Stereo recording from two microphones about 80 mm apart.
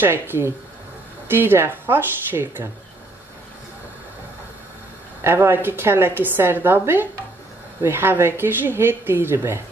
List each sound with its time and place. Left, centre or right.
0.0 s a woman's voice: right
5.2 s a woman's voice: right